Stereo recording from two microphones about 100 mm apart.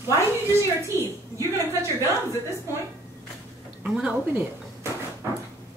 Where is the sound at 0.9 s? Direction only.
30° right (ahead or behind).